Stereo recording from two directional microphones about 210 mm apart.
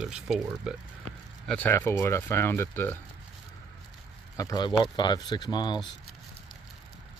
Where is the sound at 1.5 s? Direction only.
10° left (ahead or behind).